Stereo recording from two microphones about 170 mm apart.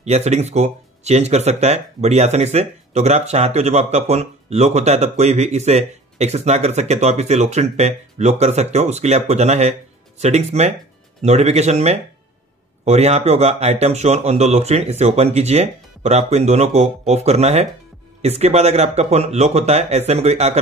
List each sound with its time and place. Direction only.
0.0 s speech: 40° right (ahead or behind)